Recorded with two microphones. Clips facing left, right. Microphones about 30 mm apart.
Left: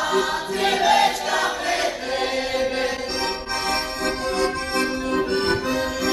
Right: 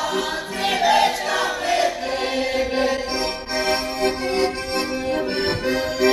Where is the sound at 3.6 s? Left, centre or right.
Right.